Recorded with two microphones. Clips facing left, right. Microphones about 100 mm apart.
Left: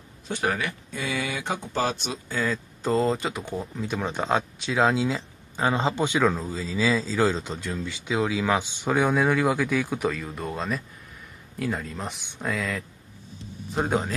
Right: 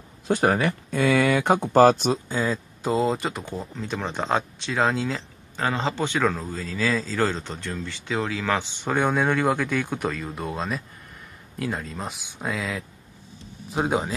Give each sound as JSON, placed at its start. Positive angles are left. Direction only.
{"t": 0.3, "sound": "speech", "side_deg": -35}
{"t": 0.9, "sound": "speech", "side_deg": -60}
{"t": 2.2, "sound": "speech", "side_deg": -15}
{"t": 2.8, "sound": "speech", "side_deg": -5}
{"t": 8.9, "sound": "speech", "side_deg": 0}